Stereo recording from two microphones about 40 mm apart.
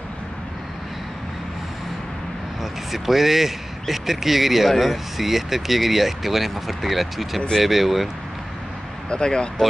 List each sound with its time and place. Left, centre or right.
2.6 s speech: centre
9.1 s speech: left